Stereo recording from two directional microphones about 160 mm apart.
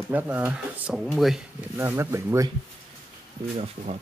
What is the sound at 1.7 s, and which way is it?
Speech, 15° right (ahead or behind).